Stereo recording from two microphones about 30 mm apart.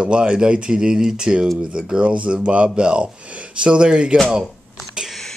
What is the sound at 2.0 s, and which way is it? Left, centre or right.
Speech, right.